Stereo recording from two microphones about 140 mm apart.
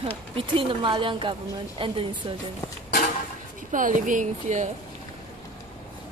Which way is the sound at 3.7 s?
70° right (ahead or behind).